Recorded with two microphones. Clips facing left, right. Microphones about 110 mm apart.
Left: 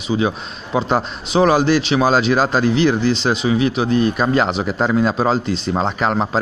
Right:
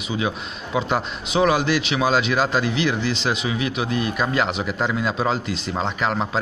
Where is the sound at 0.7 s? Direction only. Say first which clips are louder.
Left 4 dB; 35° left (ahead or behind).